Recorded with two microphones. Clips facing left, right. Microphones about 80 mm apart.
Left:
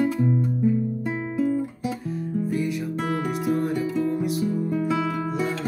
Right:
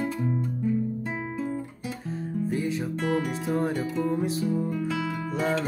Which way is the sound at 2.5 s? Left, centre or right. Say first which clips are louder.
Left 2 dB; right.